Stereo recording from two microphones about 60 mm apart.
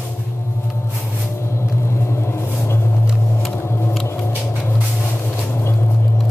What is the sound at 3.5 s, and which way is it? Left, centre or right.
Mechanisms, left.